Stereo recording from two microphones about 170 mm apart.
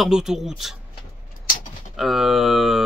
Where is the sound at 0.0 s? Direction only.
5° right (ahead or behind).